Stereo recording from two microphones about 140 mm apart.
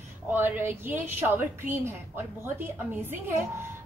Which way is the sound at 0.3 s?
15° right (ahead or behind).